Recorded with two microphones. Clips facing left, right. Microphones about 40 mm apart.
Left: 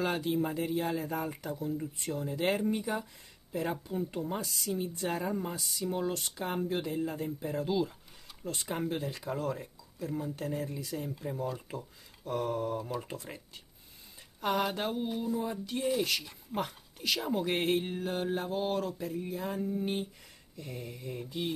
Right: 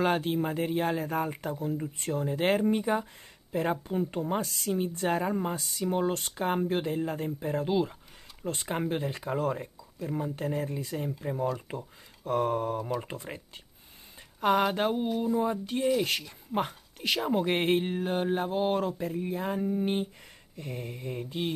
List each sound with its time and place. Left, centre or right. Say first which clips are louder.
0.0 s speech: right 4 dB; right
2.0 s speech: right 4 dB; right
12.3 s speech: right 5 dB; right
14.4 s speech: right 6 dB; right